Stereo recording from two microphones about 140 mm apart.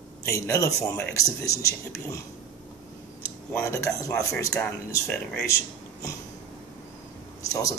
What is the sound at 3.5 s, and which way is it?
Speech, 20° left (ahead or behind).